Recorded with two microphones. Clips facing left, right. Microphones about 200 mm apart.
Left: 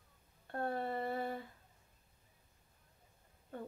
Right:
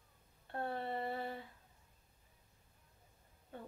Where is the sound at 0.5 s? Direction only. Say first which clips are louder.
Left 2 dB; 45° left (ahead or behind).